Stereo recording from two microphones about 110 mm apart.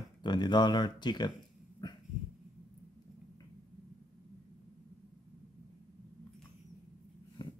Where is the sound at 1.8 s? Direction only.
40° left (ahead or behind).